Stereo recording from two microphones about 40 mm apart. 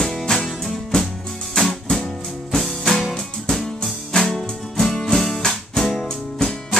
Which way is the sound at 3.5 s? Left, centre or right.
Centre.